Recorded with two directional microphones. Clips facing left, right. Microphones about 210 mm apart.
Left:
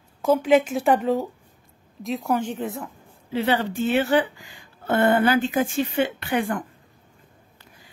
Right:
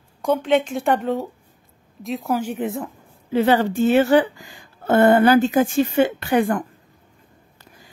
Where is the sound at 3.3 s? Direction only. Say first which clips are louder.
Right 6 dB; 45° right (ahead or behind).